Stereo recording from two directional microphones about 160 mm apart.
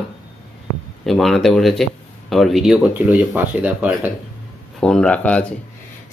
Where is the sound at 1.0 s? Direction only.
Centre (ahead or behind).